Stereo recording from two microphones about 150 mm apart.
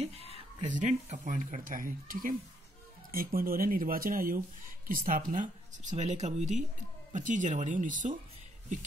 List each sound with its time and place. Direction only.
0.0 s speech: 40° right (ahead or behind); by 8.2 s 60° right (ahead or behind)